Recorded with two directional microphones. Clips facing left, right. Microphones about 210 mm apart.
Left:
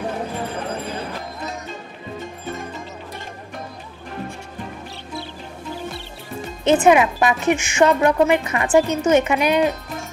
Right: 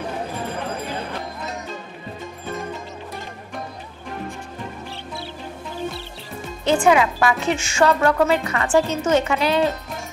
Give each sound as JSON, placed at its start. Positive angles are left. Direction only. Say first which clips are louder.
{"t": 6.6, "sound": "a woman's voice", "louder": "left 2 dB", "side_deg": 20}